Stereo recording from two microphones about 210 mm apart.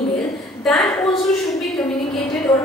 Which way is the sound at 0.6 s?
Centre (ahead or behind).